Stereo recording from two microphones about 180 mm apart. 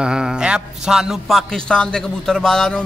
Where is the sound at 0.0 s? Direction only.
5° right (ahead or behind).